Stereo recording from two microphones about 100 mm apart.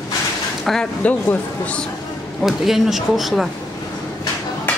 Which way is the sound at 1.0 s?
15° left (ahead or behind).